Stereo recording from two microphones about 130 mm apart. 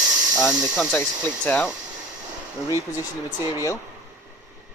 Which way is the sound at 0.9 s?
15° left (ahead or behind).